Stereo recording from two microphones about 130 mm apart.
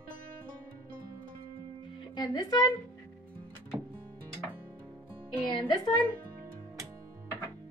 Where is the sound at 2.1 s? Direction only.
35° left (ahead or behind).